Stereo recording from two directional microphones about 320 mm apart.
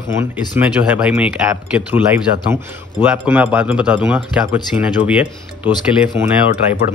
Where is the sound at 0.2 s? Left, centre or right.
Centre.